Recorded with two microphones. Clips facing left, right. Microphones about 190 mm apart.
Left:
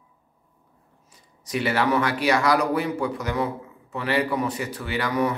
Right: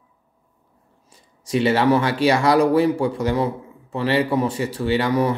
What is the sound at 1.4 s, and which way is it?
Speech, 25° right (ahead or behind).